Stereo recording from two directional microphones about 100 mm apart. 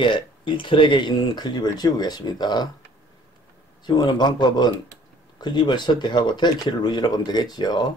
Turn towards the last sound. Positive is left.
turn(degrees=45)  # may be behind; listen again after turning